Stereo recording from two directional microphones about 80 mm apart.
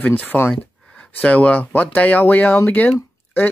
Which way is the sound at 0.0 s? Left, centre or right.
Left.